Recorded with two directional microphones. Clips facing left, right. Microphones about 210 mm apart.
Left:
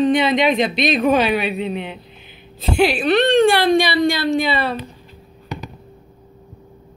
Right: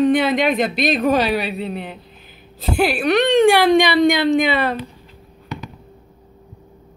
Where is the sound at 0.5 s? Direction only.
5° right (ahead or behind).